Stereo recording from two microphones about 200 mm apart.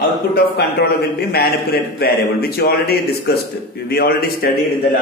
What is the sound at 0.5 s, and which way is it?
A man's voice, 50° left (ahead or behind).